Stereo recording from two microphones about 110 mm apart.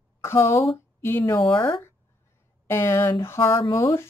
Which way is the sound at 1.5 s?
55° left (ahead or behind).